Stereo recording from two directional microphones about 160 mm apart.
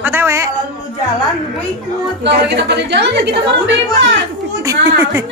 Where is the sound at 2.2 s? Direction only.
90° right.